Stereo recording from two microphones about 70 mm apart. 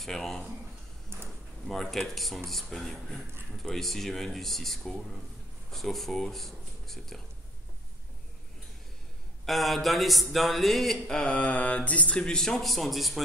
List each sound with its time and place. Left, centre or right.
0.0 s a man's voice: centre
1.1 s a sound: right
1.7 s a man's voice: centre
9.5 s a man's voice: centre
11.1 s speech: centre